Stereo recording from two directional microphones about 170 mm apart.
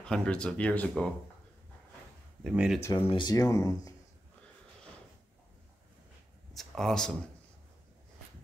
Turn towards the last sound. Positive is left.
turn(degrees=5)  # may be behind; listen again after turning